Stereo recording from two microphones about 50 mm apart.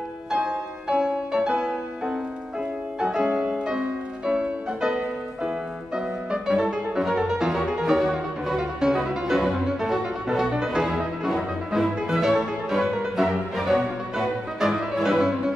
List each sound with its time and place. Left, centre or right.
0.3 s music: centre